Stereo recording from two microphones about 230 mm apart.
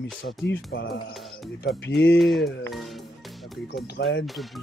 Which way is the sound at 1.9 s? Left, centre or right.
Left.